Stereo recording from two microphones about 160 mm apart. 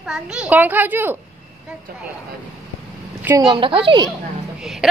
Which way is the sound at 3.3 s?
30° right (ahead or behind).